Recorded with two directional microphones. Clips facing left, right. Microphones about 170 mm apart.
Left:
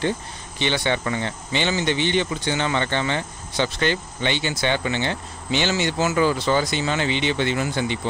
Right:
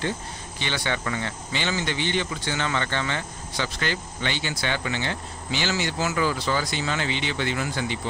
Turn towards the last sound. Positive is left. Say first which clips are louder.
# left 4 dB
turn(degrees=25)  # may be behind; listen again after turning